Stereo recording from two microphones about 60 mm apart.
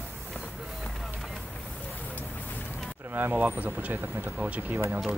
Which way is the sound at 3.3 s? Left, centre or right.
Right.